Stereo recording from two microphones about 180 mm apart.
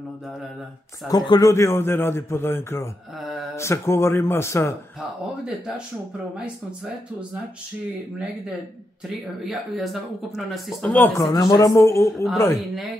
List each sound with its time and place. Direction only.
1.0 s a man's voice: 25° left (ahead or behind)
3.2 s speech: centre (ahead or behind)
3.5 s a man's voice: 15° left (ahead or behind)
9.4 s speech: centre (ahead or behind)
11.2 s speech: 20° left (ahead or behind)
12.5 s speech: centre (ahead or behind)